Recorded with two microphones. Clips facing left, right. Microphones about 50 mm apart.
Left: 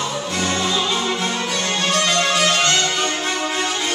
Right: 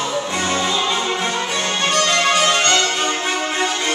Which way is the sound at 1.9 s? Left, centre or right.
Centre.